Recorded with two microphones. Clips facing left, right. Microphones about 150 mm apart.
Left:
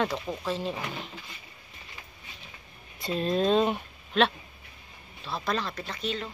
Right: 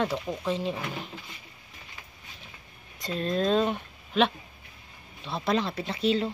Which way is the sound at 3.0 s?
5° left (ahead or behind).